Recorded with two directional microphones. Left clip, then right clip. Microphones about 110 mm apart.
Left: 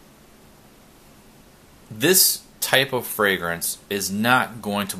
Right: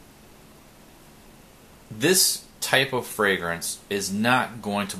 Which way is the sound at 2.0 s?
25° left (ahead or behind).